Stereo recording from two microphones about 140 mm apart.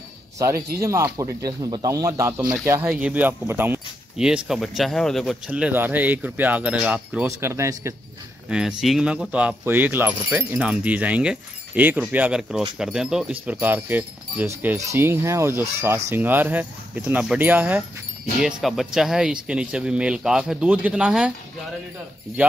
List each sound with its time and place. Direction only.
0.4 s speech: 20° right (ahead or behind)
2.9 s speech: 10° right (ahead or behind)
5.5 s speech: 10° right (ahead or behind)
7.2 s speech: 20° right (ahead or behind)
8.5 s speech: 5° right (ahead or behind)
18.4 s speech: centre (ahead or behind)